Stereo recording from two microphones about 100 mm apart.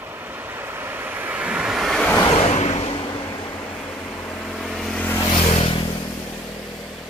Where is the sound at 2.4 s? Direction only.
90° left.